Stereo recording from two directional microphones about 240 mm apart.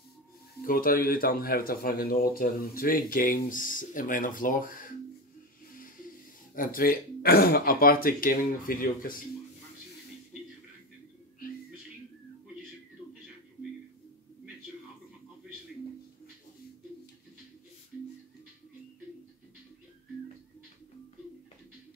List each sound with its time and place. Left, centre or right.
0.7 s speech: left
6.5 s speech: left